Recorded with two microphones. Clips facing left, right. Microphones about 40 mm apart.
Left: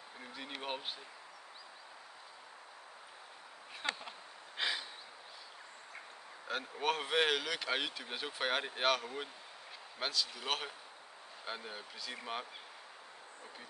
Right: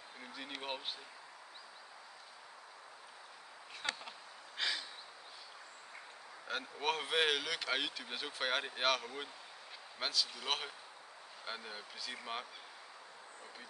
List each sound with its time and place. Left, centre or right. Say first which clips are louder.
0.2 s speech: left 1 dB; centre
3.8 s a sound: left 2 dB; centre
6.4 s speech: left 2 dB; centre